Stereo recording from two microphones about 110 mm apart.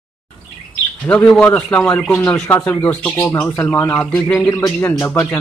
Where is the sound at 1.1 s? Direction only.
20° left (ahead or behind).